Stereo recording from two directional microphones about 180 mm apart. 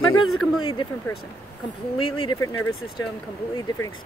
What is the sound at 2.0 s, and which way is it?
Speech, 30° left (ahead or behind).